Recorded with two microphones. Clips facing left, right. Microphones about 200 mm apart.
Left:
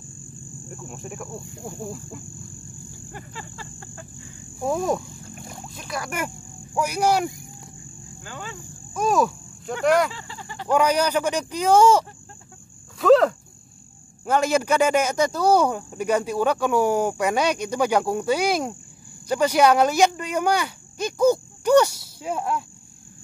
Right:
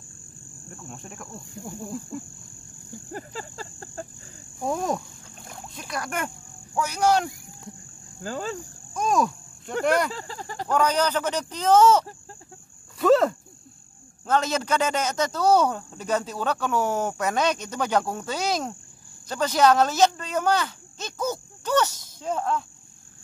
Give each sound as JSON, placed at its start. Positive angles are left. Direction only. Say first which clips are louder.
{"t": 0.8, "sound": "speech", "louder": "left 5 dB", "side_deg": 5}
{"t": 3.1, "sound": "a sound", "louder": "right 5 dB", "side_deg": -40}
{"t": 4.6, "sound": "speech", "louder": "left 3 dB", "side_deg": 0}
{"t": 8.2, "sound": "a sound", "louder": "right 7 dB", "side_deg": -40}
{"t": 8.9, "sound": "cricket", "louder": "left 2 dB", "side_deg": 5}
{"t": 9.8, "sound": "speech", "louder": "left 4 dB", "side_deg": 0}
{"t": 10.1, "sound": "a sound", "louder": "right 3 dB", "side_deg": -40}
{"t": 10.7, "sound": "speech", "louder": "left 3 dB", "side_deg": 10}
{"t": 13.0, "sound": "cricket", "louder": "left 3 dB", "side_deg": 0}
{"t": 14.2, "sound": "speech", "louder": "left 4 dB", "side_deg": 10}